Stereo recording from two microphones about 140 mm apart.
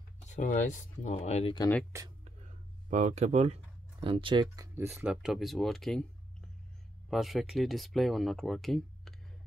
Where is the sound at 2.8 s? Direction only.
60° right (ahead or behind); by 4.4 s 40° right (ahead or behind).